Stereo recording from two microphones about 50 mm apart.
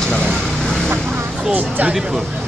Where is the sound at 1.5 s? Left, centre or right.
Right.